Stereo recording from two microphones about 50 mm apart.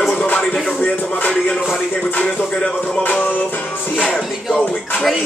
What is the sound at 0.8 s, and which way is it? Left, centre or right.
Music, left.